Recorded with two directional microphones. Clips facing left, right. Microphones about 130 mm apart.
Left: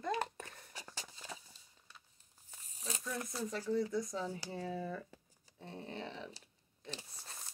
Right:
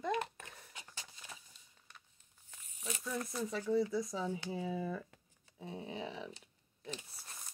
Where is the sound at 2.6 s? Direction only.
35° left (ahead or behind).